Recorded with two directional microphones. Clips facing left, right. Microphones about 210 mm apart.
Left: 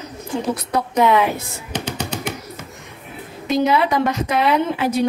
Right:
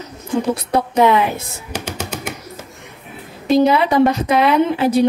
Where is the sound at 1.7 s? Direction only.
10° right (ahead or behind).